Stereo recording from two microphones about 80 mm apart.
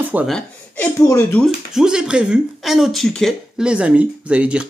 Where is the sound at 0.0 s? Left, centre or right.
Centre.